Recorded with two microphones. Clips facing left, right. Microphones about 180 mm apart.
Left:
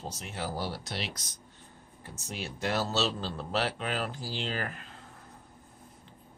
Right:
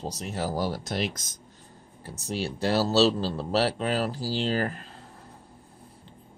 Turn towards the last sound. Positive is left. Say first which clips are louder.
# right 8 dB
turn(degrees=-35)  # may be behind; listen again after turning